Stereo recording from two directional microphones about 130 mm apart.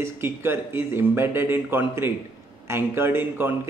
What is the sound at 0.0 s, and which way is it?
Speech, 20° right (ahead or behind).